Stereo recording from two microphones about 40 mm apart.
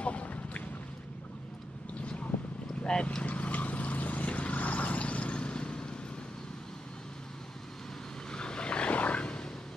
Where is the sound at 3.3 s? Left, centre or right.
Left.